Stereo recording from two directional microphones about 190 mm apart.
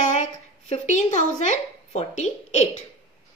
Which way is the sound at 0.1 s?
40° left (ahead or behind).